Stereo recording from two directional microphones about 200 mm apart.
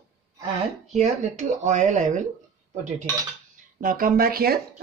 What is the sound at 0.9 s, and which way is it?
Speech, 35° right (ahead or behind).